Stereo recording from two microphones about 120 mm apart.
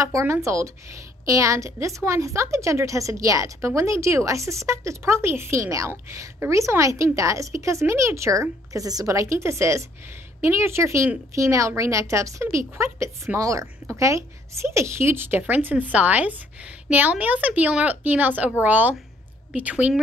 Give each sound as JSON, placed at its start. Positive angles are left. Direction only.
{"t": 0.0, "sound": "a woman's voice", "side_deg": -25}